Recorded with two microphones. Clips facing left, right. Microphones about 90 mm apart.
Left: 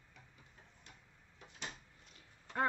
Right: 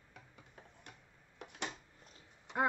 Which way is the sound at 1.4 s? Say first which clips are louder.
Right 6 dB; 65° right (ahead or behind).